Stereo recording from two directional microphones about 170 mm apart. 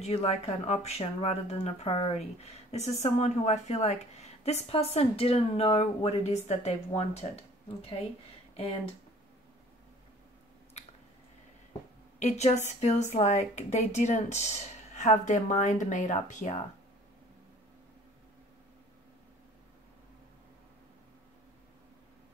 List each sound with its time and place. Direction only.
0.0 s speech: 35° left (ahead or behind)
12.2 s a woman's voice: 40° left (ahead or behind)